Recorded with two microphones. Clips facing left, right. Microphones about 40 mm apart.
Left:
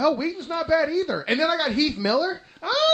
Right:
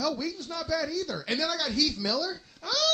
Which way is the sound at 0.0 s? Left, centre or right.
Left.